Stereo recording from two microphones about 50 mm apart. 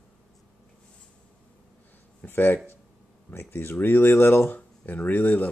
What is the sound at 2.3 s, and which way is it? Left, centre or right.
Speech, left.